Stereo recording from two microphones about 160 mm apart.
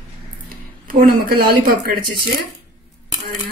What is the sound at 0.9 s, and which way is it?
Speech, 65° right (ahead or behind).